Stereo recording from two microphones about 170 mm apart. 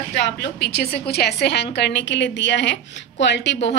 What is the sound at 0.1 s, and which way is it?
A woman's voice, 75° left (ahead or behind).